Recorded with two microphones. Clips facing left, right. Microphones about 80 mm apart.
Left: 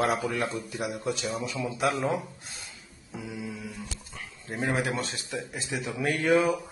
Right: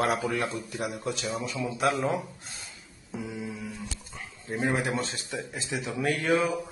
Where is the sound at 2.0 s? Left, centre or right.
Centre.